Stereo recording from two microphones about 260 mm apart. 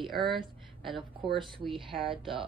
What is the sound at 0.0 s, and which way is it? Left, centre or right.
A woman's voice, centre.